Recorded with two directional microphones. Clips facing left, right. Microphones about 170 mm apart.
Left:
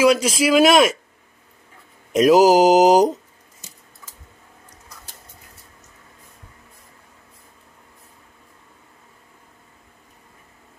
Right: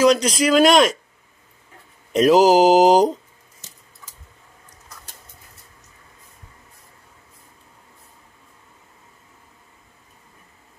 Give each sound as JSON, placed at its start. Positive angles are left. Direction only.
{"t": 0.0, "sound": "speech", "side_deg": 5}
{"t": 2.1, "sound": "mantra", "side_deg": 5}